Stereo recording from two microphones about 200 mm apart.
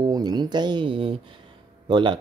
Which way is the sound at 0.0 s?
20° right (ahead or behind).